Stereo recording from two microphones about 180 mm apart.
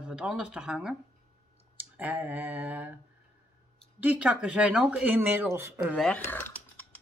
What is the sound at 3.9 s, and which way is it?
Speech, 5° right (ahead or behind).